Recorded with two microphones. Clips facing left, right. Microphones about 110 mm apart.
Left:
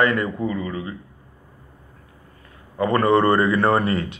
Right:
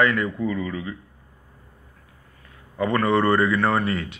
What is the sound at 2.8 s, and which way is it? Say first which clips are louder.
A man's voice: left 3 dB; 35° left (ahead or behind).